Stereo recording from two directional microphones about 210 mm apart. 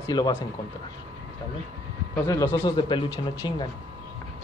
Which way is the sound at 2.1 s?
10° left (ahead or behind).